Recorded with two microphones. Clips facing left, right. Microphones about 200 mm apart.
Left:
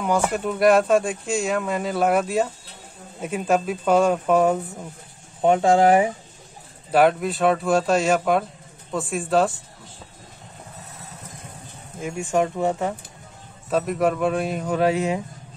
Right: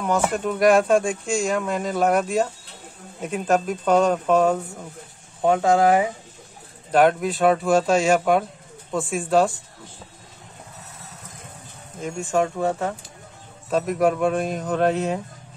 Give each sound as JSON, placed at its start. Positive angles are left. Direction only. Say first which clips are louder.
{"t": 0.3, "sound": "speech", "louder": "even", "side_deg": 5}
{"t": 5.4, "sound": "speech", "louder": "left 1 dB", "side_deg": 25}
{"t": 6.9, "sound": "speech", "louder": "even", "side_deg": 5}
{"t": 12.0, "sound": "speech", "louder": "even", "side_deg": 15}
{"t": 13.7, "sound": "speech", "louder": "right 1 dB", "side_deg": 0}